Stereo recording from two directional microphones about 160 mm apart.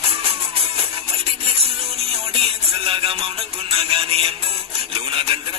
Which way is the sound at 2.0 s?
40° right (ahead or behind).